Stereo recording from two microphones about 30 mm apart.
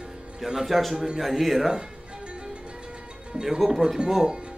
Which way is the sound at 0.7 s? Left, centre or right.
Centre.